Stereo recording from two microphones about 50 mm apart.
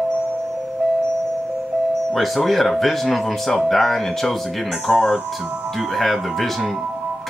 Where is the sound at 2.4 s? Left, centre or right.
Centre.